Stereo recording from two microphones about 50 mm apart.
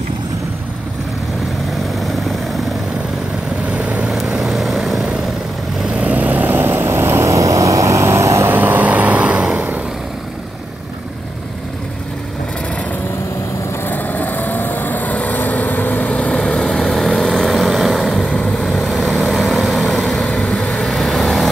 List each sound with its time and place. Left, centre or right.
2.0 s vehicle: centre
3.7 s vehicle: right
4.4 s vehicle: centre
5.9 s vehicle: right
6.8 s vehicle: right
8.5 s vehicle: right
13.8 s vehicle: left
16.3 s vehicle: centre